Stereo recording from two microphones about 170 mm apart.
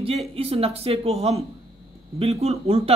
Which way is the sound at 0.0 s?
35° right (ahead or behind).